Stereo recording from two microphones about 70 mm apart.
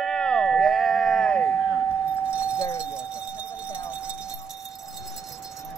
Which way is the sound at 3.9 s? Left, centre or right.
Centre.